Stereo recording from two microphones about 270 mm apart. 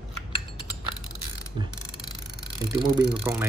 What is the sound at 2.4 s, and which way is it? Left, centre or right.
Speech, centre.